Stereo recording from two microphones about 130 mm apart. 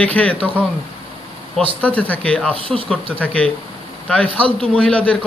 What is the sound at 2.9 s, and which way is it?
Speech, 10° left (ahead or behind).